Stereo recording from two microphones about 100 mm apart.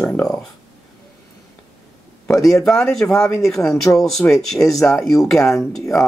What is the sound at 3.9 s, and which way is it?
Speech, 30° left (ahead or behind).